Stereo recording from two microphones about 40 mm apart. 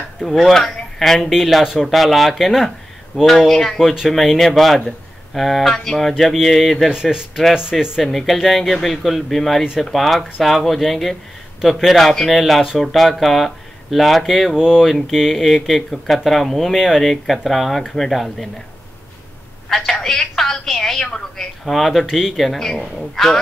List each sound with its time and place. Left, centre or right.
0.2 s speech: centre
1.3 s speech: centre
6.1 s speech: centre
6.9 s speech: centre
7.7 s speech: centre
12.0 s speech: centre
19.9 s telephone: centre
20.6 s speech: centre
21.6 s speech: centre
22.0 s speech: centre
22.4 s speech: centre